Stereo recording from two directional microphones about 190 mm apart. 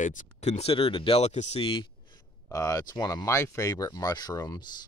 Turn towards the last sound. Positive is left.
turn(degrees=20)  # may be behind; listen again after turning